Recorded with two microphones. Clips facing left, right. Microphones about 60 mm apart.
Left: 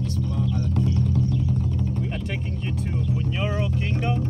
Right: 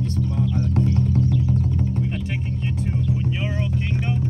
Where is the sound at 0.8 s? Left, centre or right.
Right.